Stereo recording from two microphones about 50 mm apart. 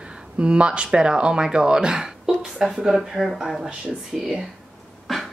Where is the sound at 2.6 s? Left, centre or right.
Centre.